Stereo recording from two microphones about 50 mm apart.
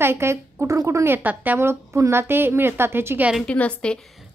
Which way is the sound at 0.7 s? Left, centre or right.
Right.